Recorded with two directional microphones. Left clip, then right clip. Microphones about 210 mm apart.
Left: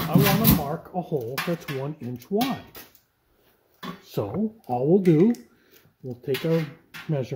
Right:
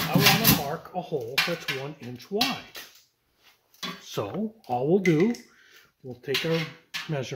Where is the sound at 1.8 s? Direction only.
5° left (ahead or behind).